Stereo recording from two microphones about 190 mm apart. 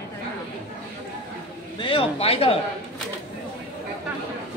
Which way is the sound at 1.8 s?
25° left (ahead or behind).